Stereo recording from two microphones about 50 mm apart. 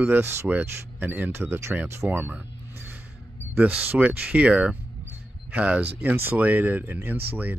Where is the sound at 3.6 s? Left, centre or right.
Right.